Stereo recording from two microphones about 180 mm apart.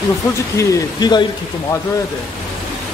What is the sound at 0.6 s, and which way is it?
Speech, 20° left (ahead or behind).